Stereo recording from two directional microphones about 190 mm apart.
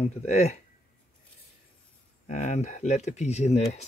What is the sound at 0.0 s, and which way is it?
Speech, 35° left (ahead or behind).